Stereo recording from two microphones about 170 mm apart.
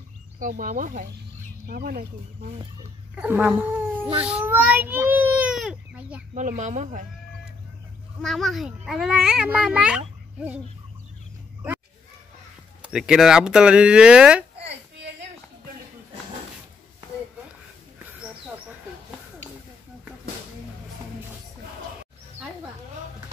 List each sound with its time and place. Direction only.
0.4 s speech: 50° right (ahead or behind)
1.7 s speech: 65° right (ahead or behind)
3.2 s speech: 10° right (ahead or behind)
6.3 s speech: 45° right (ahead or behind)
8.2 s a child's voice: centre (ahead or behind)
12.8 s a child's voice: 5° right (ahead or behind)